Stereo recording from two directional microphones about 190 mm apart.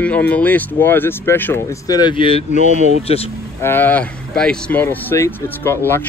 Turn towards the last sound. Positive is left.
turn(degrees=10)  # may be behind; listen again after turning